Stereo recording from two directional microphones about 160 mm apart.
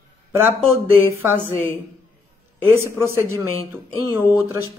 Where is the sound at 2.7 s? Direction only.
15° right (ahead or behind).